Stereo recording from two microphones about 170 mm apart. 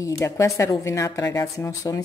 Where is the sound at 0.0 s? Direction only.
20° left (ahead or behind).